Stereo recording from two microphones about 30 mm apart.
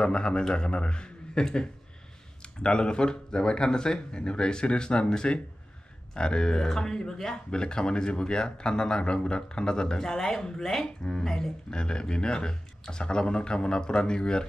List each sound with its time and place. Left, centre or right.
0.0 s a man's voice: left; by 7.4 s centre
7.5 s speech: left
11.7 s speech: left